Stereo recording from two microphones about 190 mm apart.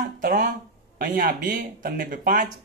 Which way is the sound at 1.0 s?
45° right (ahead or behind).